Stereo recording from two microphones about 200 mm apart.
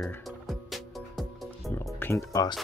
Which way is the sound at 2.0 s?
15° left (ahead or behind).